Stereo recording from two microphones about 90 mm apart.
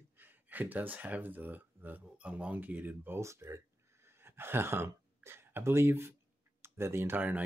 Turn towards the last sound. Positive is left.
turn(degrees=-20)  # may be behind; listen again after turning